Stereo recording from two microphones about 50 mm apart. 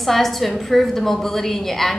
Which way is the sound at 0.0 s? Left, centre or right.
Centre.